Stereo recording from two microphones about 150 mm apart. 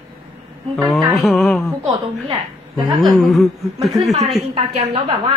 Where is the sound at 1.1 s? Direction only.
Centre (ahead or behind).